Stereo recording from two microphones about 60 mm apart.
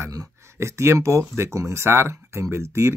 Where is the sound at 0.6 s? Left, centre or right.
Right.